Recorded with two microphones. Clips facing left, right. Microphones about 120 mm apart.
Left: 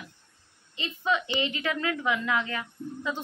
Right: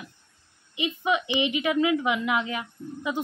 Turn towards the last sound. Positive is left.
turn(degrees=-15)  # may be behind; listen again after turning